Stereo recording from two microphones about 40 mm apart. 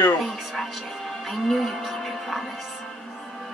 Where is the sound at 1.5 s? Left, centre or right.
Centre.